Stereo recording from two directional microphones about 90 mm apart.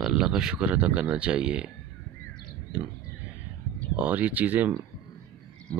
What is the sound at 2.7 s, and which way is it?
Speech, 20° right (ahead or behind).